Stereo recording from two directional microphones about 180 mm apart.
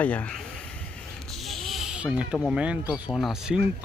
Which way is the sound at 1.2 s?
Centre (ahead or behind).